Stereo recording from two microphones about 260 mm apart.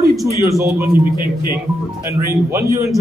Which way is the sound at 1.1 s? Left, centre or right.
Right.